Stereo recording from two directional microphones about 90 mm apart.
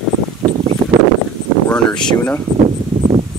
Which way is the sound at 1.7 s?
10° left (ahead or behind).